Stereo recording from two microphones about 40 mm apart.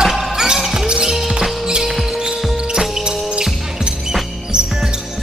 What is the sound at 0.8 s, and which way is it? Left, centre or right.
Music, right.